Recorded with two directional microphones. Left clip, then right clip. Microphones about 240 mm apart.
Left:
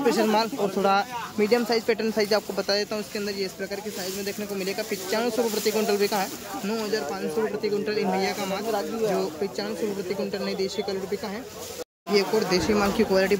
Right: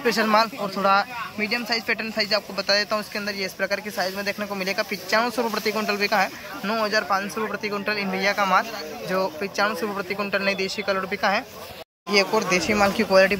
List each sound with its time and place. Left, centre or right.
0.0 s speech: centre
12.1 s speech: centre